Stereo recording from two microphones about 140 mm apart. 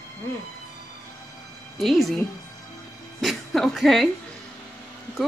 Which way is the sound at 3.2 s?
Centre (ahead or behind).